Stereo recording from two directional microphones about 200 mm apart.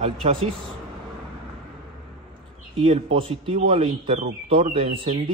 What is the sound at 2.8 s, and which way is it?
A man's voice, 30° right (ahead or behind).